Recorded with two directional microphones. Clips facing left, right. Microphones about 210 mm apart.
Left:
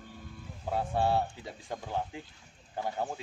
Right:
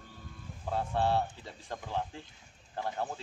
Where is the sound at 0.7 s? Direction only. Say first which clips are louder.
Left 1 dB; 10° left (ahead or behind).